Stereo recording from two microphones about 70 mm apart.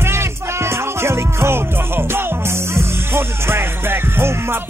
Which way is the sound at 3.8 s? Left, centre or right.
Right.